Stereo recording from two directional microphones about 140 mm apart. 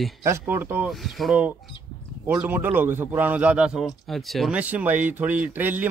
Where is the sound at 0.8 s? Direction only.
Centre (ahead or behind).